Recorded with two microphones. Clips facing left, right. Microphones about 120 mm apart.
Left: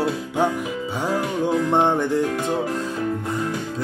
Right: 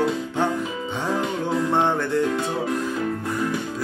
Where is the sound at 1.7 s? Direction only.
15° left (ahead or behind).